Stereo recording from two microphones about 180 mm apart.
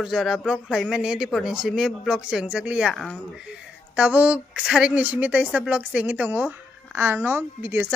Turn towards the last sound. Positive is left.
turn(degrees=-10)  # may be behind; listen again after turning